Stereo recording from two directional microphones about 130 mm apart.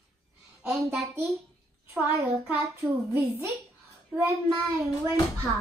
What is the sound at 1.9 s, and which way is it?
A child's voice, 15° right (ahead or behind).